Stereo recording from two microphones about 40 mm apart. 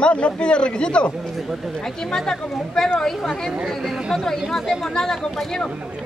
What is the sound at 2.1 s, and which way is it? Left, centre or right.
Speech, centre.